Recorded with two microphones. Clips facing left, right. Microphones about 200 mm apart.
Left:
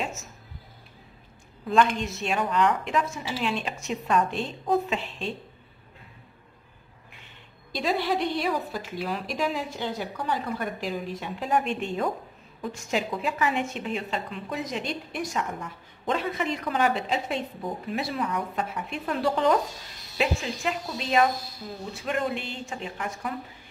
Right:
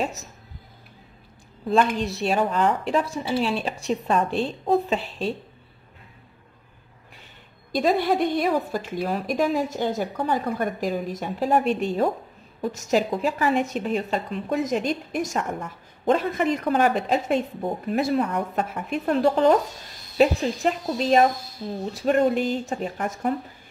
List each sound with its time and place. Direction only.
0.0 s a woman's voice: 35° right (ahead or behind)
1.7 s a woman's voice: 35° right (ahead or behind)
7.7 s a woman's voice: 45° right (ahead or behind)